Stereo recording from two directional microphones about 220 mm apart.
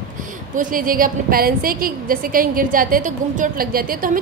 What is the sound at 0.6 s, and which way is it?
A woman's voice, 40° right (ahead or behind).